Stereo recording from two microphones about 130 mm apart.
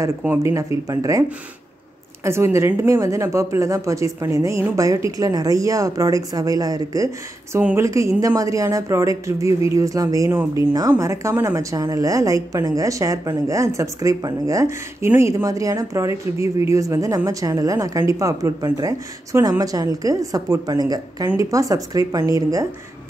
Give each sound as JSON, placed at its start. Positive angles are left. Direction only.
{"t": 0.2, "sound": "a woman's voice", "side_deg": -20}
{"t": 2.2, "sound": "a woman's voice", "side_deg": -20}